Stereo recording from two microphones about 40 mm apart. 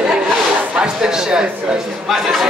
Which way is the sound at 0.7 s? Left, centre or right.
Right.